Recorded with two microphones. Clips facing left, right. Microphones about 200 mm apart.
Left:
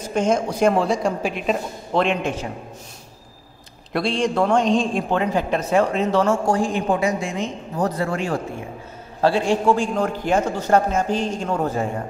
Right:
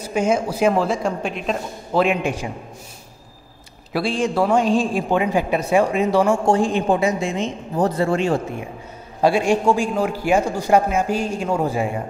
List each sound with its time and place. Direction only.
0.0 s speech: 10° right (ahead or behind)
3.9 s a man's voice: 5° right (ahead or behind)
6.4 s speech: 25° right (ahead or behind)
9.2 s a man's voice: 15° right (ahead or behind)